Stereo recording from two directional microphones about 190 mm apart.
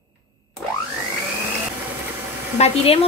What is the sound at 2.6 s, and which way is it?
Speech, 35° left (ahead or behind).